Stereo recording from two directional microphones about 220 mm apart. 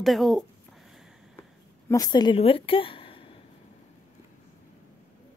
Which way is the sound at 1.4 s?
15° left (ahead or behind).